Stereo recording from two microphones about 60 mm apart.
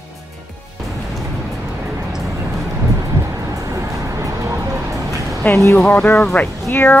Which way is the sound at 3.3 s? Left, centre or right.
Right.